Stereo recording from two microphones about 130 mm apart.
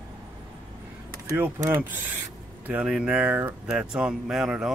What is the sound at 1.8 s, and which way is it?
Speech, 15° right (ahead or behind).